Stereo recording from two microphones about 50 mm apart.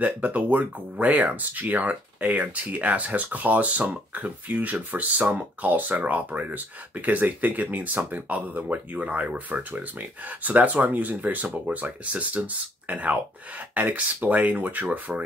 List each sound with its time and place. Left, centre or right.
0.0 s speech: right